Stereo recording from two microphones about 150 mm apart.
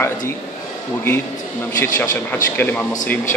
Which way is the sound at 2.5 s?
10° left (ahead or behind).